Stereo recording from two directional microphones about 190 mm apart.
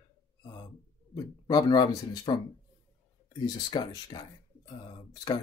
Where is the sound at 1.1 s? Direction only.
20° left (ahead or behind).